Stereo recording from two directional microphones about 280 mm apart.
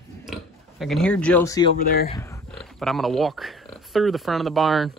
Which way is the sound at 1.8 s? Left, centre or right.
Left.